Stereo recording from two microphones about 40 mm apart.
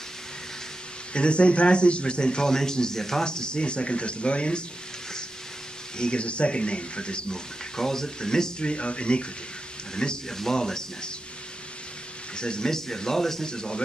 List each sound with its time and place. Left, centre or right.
1.1 s speech: left
5.9 s speech: left
9.9 s speech: centre
12.4 s speech: left